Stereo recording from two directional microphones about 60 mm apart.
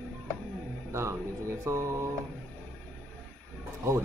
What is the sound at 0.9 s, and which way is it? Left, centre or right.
Speech, right.